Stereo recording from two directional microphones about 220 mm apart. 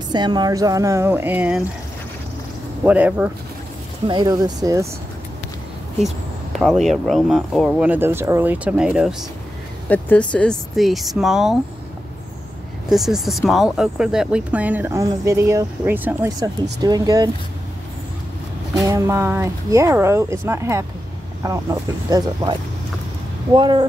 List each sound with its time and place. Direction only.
0.1 s speech: 20° right (ahead or behind)
2.8 s speech: 5° right (ahead or behind)
4.1 s speech: 15° right (ahead or behind)
6.6 s speech: centre (ahead or behind)
9.8 s speech: 5° left (ahead or behind)
12.9 s speech: centre (ahead or behind); by 17.3 s 15° right (ahead or behind)
18.8 s speech: 15° right (ahead or behind)